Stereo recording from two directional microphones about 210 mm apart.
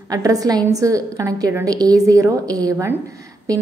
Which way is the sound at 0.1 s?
15° right (ahead or behind).